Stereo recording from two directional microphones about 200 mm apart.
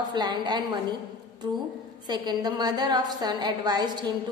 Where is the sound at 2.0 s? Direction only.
20° right (ahead or behind).